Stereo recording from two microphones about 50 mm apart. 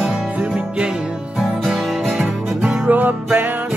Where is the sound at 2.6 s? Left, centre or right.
Right.